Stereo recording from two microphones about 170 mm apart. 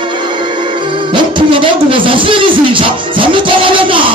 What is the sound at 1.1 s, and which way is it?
Music, 30° right (ahead or behind).